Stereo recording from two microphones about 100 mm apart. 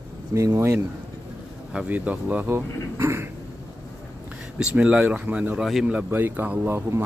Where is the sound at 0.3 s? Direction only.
30° right (ahead or behind).